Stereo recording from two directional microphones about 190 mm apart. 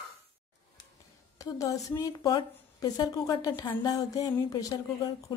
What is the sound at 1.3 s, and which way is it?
A woman's voice, 20° left (ahead or behind).